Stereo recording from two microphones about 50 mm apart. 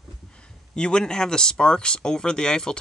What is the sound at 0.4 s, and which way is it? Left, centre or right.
Speech, centre.